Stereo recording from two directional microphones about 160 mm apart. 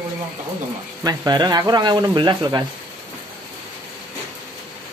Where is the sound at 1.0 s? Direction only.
25° right (ahead or behind).